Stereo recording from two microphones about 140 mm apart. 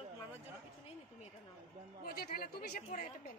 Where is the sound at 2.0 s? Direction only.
90° left.